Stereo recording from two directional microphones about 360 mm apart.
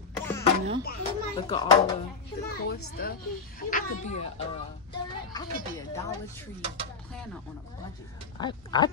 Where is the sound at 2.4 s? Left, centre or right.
Left.